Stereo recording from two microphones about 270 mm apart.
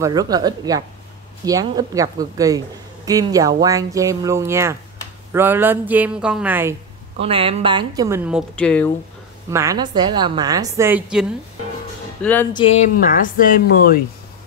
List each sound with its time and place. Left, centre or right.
0.0 s a woman's voice: centre
7.2 s a woman's voice: centre
9.5 s a woman's voice: centre
12.5 s speech: left